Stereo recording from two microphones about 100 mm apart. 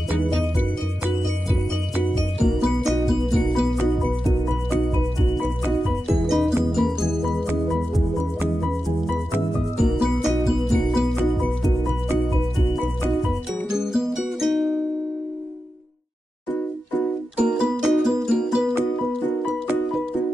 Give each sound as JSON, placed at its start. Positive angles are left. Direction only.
{"t": 2.3, "sound": "music", "side_deg": 0}
{"t": 5.9, "sound": "music", "side_deg": 0}
{"t": 9.8, "sound": "music", "side_deg": -5}
{"t": 13.3, "sound": "music", "side_deg": -5}
{"t": 16.5, "sound": "music", "side_deg": 15}
{"t": 17.5, "sound": "music", "side_deg": -5}